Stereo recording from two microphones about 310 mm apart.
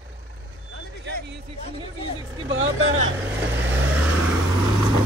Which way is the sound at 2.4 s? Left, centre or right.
Right.